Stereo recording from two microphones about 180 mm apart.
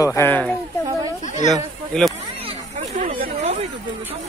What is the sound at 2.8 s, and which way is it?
Chatter, 40° right (ahead or behind).